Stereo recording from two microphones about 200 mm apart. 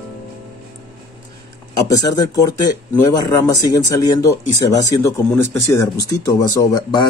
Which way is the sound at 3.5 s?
15° left (ahead or behind).